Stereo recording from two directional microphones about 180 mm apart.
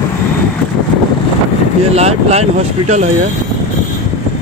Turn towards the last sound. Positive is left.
turn(degrees=-40)  # may be behind; listen again after turning